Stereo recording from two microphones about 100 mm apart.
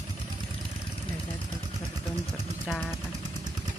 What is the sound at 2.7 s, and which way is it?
Jackhammer, centre (ahead or behind).